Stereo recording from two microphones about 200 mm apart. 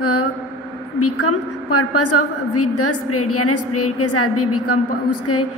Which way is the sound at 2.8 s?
90° left.